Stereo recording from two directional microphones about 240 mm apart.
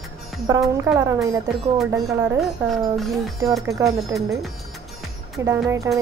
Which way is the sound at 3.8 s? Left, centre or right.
Centre.